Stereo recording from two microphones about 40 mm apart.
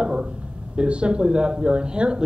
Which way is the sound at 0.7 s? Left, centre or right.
Right.